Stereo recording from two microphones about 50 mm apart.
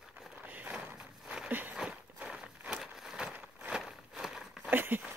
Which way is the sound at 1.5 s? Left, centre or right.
Right.